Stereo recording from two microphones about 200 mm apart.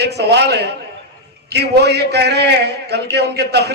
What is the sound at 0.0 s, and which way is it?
A man's voice, 55° right (ahead or behind).